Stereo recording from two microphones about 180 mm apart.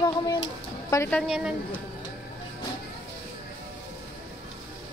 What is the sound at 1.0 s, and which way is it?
Speech, 5° left (ahead or behind).